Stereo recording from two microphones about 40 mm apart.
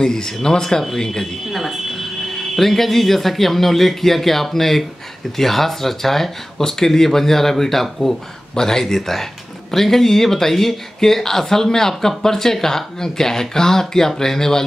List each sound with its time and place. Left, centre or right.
0.0 s speech: centre
1.5 s speech: centre